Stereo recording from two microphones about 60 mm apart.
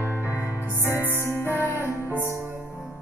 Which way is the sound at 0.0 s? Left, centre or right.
Right.